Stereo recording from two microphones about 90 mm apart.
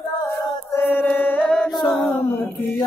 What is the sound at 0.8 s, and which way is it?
Music, 20° left (ahead or behind).